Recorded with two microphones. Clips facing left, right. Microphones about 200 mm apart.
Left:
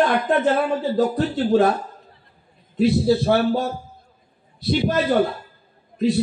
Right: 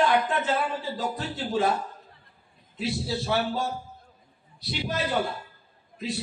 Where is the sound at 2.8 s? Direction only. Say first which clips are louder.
Left 13 dB; 60° left (ahead or behind).